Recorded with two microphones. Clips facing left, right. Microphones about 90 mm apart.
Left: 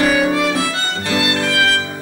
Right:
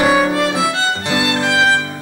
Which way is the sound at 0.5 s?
20° right (ahead or behind).